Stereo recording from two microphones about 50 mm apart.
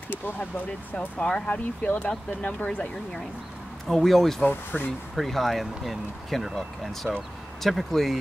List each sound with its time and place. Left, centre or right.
0.9 s speech: left
3.9 s speech: centre
4.5 s speech: left
5.1 s speech: centre